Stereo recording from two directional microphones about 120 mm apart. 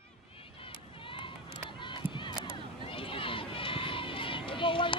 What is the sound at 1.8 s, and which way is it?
Run, 40° left (ahead or behind).